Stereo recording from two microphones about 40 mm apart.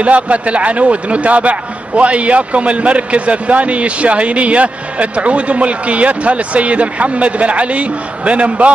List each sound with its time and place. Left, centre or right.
0.0 s a man's voice: right